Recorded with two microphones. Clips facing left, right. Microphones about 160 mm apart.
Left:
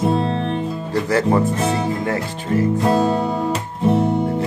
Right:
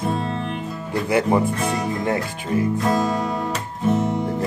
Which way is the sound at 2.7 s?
30° left (ahead or behind).